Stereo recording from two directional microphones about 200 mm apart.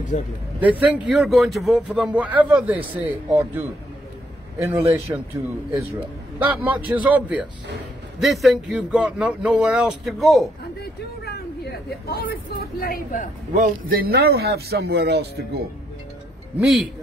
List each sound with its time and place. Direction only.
0.1 s speech: 35° left (ahead or behind)
0.9 s a man's voice: 5° right (ahead or behind)
5.1 s a man's voice: 15° right (ahead or behind)
10.8 s a sound: 55° left (ahead or behind)
12.5 s a woman's voice: 50° left (ahead or behind)
13.5 s speech: 45° right (ahead or behind)
16.5 s speech: centre (ahead or behind)